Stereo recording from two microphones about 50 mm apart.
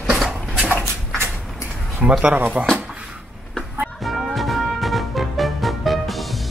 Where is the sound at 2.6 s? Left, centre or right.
Right.